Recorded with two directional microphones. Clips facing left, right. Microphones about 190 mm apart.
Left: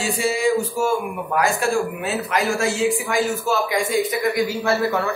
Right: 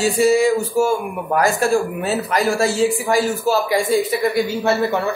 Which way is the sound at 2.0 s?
35° right (ahead or behind).